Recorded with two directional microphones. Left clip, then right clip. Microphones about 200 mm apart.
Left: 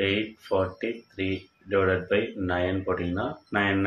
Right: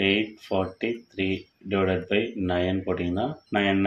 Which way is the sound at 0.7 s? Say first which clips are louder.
Right 2 dB; 40° right (ahead or behind).